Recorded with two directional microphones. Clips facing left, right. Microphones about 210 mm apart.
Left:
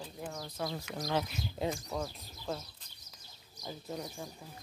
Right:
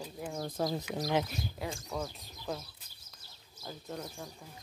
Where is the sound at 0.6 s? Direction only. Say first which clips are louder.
Right 5 dB; 40° right (ahead or behind).